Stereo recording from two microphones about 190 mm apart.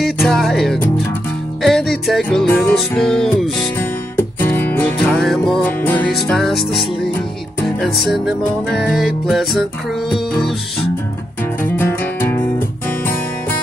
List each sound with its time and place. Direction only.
0.0 s music: centre (ahead or behind)
3.7 s music: 10° left (ahead or behind)
11.6 s music: 10° left (ahead or behind)